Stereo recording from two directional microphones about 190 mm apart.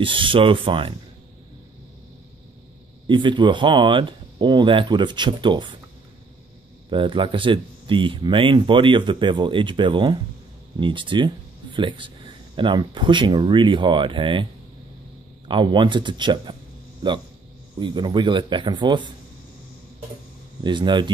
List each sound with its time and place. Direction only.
0.0 s speech: 25° right (ahead or behind)
3.1 s speech: 25° right (ahead or behind)
6.9 s speech: 25° right (ahead or behind)
17.7 s speech: 25° right (ahead or behind)
20.6 s speech: 25° right (ahead or behind)